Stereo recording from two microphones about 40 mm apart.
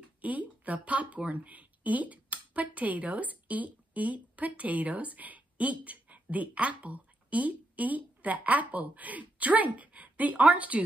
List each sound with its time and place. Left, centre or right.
0.2 s a woman's voice: right